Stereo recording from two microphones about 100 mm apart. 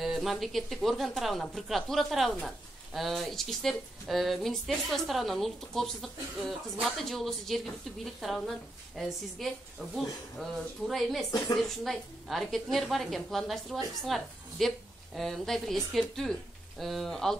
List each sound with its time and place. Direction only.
0.0 s a woman's voice: centre (ahead or behind)